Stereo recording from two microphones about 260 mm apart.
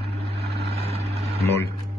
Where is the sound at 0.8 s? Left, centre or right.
Right.